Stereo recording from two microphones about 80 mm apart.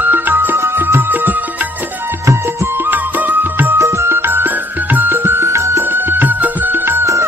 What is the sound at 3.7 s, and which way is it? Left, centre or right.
Music, right.